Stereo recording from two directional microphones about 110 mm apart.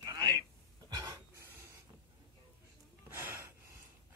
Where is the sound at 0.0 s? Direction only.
35° right (ahead or behind).